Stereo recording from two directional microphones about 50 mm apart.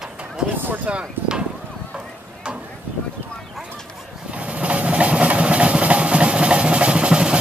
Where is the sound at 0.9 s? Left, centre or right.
Right.